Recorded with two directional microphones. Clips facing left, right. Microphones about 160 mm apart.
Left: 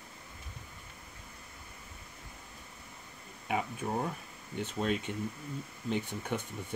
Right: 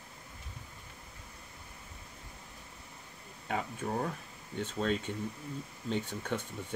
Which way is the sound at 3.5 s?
10° left (ahead or behind).